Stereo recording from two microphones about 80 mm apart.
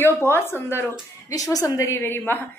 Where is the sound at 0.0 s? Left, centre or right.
Left.